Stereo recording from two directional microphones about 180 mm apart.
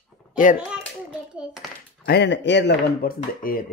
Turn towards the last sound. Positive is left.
turn(degrees=50)  # may be behind; listen again after turning